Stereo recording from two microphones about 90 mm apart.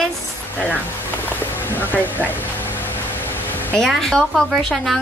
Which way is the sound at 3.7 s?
5° left (ahead or behind).